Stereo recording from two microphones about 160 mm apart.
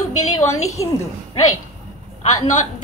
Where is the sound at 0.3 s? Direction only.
20° left (ahead or behind).